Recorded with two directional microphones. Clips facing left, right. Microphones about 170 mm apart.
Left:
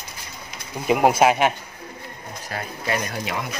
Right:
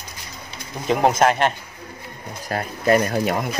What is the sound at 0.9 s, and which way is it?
Speech, 10° left (ahead or behind).